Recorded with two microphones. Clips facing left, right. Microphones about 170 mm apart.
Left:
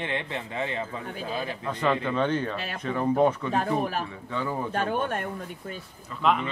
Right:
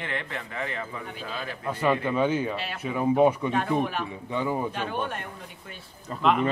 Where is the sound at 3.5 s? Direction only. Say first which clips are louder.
Even; 40° left (ahead or behind).